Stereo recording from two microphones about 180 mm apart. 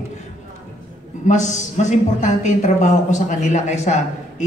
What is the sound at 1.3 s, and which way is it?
Speech, 40° left (ahead or behind).